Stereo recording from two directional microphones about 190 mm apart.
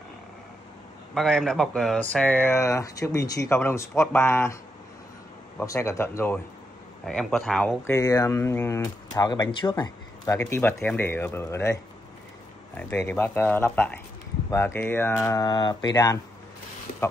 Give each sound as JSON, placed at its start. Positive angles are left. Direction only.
{"t": 1.1, "sound": "speech", "side_deg": 0}
{"t": 5.6, "sound": "speech", "side_deg": 15}
{"t": 7.9, "sound": "speech", "side_deg": 20}